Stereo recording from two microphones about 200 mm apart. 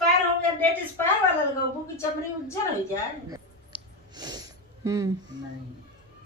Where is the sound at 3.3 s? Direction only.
20° right (ahead or behind).